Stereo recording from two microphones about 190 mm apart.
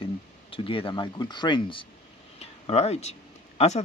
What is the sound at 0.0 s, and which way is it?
Speech, 30° left (ahead or behind).